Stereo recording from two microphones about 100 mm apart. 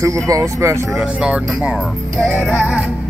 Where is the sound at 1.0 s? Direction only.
10° right (ahead or behind).